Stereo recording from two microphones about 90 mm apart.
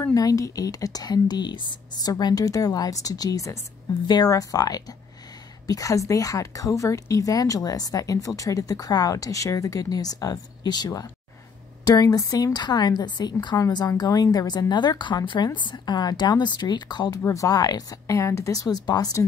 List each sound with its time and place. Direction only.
0.1 s a woman's voice: 40° left (ahead or behind)
17.3 s speech: 40° left (ahead or behind)